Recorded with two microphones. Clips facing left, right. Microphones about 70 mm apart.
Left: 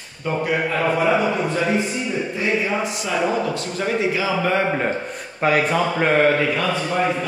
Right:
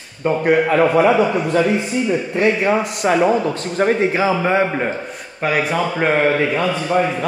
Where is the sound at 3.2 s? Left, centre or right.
Right.